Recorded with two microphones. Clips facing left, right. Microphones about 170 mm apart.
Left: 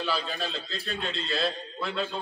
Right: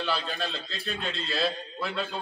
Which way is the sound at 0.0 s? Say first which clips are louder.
Even; centre (ahead or behind).